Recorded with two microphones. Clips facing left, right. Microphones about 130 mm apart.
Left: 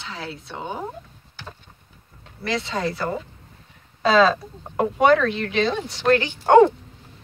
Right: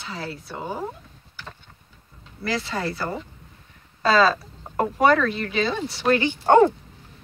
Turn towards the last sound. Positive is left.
turn(degrees=0)  # may be behind; listen again after turning